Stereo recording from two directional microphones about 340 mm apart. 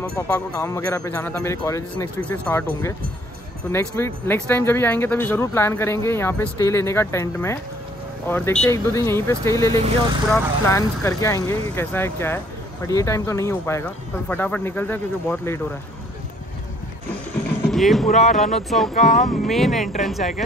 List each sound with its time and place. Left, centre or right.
0.3 s speech: centre
17.6 s speech: centre
18.1 s speech: left
18.4 s speech: centre
19.1 s speech: left
19.5 s speech: centre